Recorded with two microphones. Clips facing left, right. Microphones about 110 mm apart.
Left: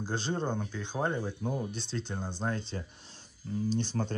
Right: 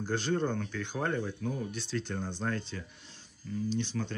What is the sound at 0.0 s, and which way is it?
Speech, 20° left (ahead or behind).